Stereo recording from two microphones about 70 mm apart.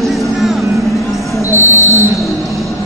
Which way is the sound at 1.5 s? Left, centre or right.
Right.